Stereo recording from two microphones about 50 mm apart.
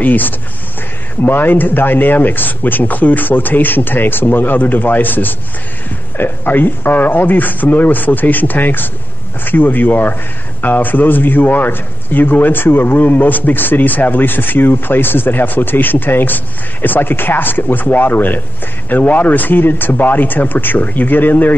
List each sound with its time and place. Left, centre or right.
0.0 s a man's voice: left